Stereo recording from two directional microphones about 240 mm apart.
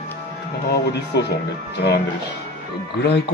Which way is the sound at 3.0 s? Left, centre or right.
Left.